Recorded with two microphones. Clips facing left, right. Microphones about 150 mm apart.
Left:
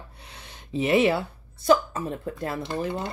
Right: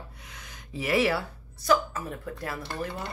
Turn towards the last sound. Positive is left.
turn(degrees=20)  # may be behind; listen again after turning